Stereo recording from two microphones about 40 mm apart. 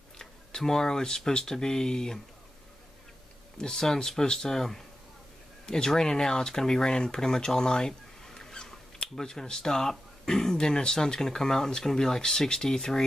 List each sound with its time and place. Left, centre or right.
0.2 s speech: centre
3.6 s speech: centre